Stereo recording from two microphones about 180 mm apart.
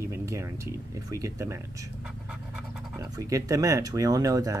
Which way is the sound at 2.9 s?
20° right (ahead or behind).